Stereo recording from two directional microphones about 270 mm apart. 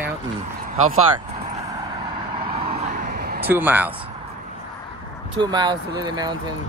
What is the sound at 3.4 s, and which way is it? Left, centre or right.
Speech, centre.